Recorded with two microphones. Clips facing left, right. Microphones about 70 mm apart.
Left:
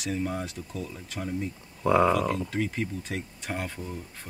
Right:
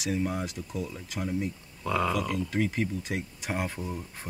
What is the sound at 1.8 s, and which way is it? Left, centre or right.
Speech, left.